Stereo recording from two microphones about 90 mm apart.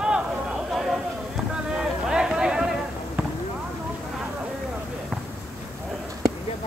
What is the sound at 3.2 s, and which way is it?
Basketball bounce, 15° right (ahead or behind).